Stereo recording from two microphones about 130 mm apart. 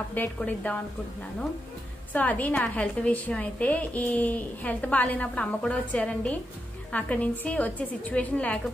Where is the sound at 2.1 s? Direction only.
10° left (ahead or behind).